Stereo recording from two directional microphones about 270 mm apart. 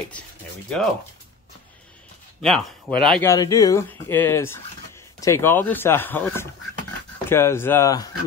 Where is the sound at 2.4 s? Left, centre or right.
Centre.